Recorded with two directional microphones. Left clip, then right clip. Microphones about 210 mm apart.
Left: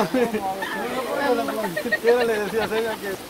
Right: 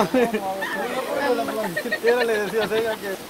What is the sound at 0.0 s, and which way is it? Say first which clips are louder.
Speech: right 2 dB; 25° right (ahead or behind).